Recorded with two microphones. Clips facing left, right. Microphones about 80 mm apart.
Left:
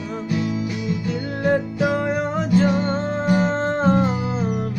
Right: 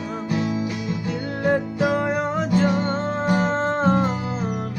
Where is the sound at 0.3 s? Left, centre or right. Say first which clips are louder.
Even; right.